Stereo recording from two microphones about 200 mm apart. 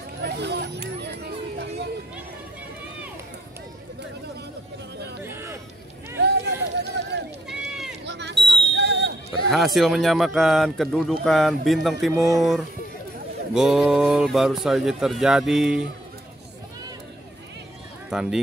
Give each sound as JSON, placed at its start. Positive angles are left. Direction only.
{"t": 0.2, "sound": "a sound", "side_deg": -60}
{"t": 5.2, "sound": "a sound", "side_deg": -10}
{"t": 6.1, "sound": "run", "side_deg": -60}
{"t": 7.4, "sound": "run", "side_deg": 0}
{"t": 8.0, "sound": "smoke detector", "side_deg": -60}
{"t": 8.7, "sound": "a sound", "side_deg": -60}
{"t": 9.5, "sound": "speech", "side_deg": 0}
{"t": 12.1, "sound": "speech", "side_deg": -15}
{"t": 12.4, "sound": "speech", "side_deg": 0}
{"t": 18.1, "sound": "speech", "side_deg": 0}